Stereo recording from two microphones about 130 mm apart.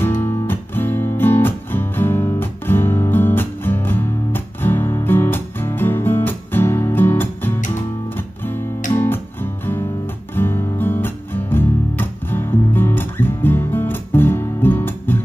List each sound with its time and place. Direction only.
0.2 s music: 15° left (ahead or behind)
8.9 s music: 15° left (ahead or behind)